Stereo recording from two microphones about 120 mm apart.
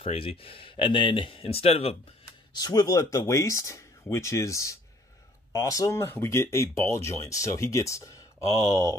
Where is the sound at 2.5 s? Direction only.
30° left (ahead or behind).